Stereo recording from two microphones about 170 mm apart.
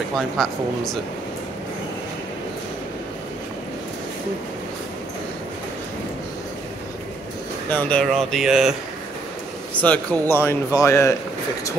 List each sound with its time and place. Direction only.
0.1 s speech: centre (ahead or behind)
7.7 s speech: 5° left (ahead or behind)
9.8 s speech: 5° left (ahead or behind)